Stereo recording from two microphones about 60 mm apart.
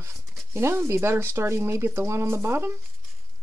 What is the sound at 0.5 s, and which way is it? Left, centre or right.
Speech, right.